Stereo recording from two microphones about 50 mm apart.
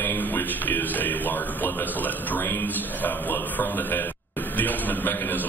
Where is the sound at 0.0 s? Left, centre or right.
Left.